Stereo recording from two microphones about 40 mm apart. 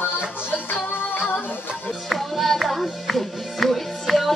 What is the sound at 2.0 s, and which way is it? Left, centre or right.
Music, centre.